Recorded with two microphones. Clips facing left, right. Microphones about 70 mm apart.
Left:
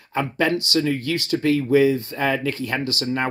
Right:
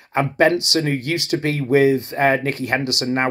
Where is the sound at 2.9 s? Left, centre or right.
Right.